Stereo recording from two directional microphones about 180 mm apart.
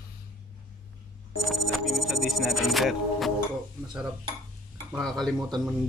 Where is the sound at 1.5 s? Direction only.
Centre (ahead or behind).